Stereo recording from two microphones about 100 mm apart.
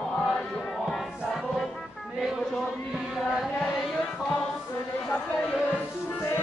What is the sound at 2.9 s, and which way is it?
Chant, 5° right (ahead or behind).